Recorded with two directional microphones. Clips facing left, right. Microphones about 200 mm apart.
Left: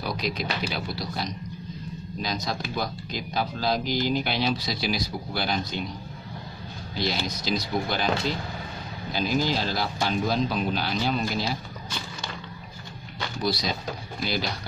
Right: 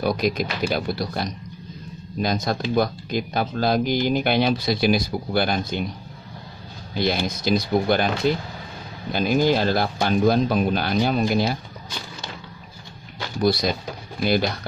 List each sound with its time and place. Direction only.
0.0 s speech: 50° right (ahead or behind)
7.0 s speech: 55° right (ahead or behind)
9.1 s speech: 55° right (ahead or behind)
13.4 s speech: 55° right (ahead or behind)